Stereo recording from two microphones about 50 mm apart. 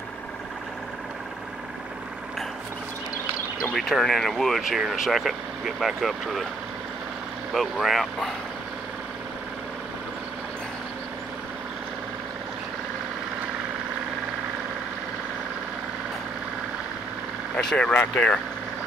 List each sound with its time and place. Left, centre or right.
3.7 s speech: centre
4.6 s speech: centre
7.5 s speech: centre
17.6 s speech: centre